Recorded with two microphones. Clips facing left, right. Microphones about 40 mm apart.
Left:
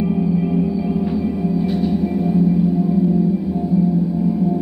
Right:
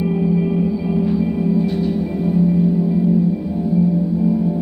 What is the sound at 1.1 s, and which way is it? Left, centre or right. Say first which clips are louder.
Gong: right 2 dB; centre.